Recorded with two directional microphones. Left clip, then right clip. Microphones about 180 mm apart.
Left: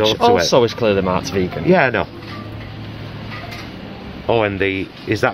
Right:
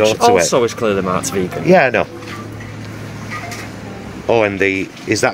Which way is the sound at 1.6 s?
5° right (ahead or behind).